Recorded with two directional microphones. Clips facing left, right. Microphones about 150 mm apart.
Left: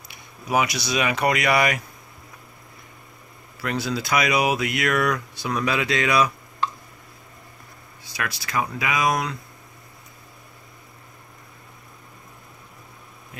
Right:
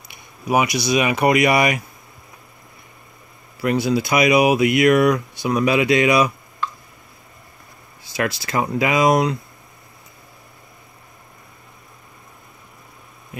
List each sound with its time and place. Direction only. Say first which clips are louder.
0.1 s speech: right 4 dB; 15° right (ahead or behind)
3.6 s speech: right 7 dB; 15° right (ahead or behind)
8.4 s speech: right 3 dB; 25° right (ahead or behind)